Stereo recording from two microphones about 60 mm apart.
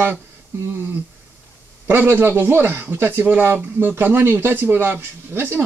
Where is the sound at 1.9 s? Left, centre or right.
Right.